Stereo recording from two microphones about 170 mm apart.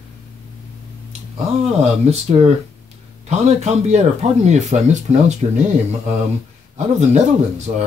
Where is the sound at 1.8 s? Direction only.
40° right (ahead or behind).